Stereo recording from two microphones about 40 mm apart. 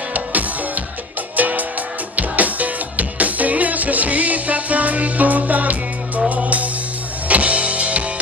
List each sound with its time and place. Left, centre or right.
0.1 s music: right
7.2 s power windows: right